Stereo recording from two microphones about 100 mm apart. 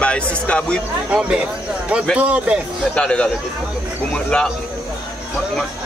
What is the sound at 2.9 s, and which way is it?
A man's voice, 10° left (ahead or behind).